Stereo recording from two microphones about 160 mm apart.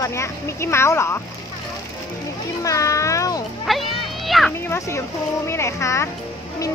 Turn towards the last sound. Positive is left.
turn(degrees=15)  # may be behind; listen again after turning